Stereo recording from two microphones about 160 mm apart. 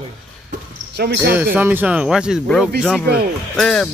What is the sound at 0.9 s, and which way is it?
Speech, 85° right.